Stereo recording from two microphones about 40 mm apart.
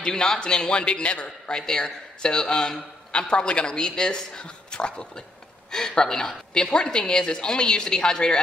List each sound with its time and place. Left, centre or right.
0.0 s a man's voice: centre
6.5 s a man's voice: left